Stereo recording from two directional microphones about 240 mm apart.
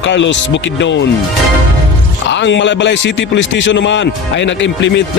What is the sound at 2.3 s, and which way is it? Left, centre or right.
Speech, left.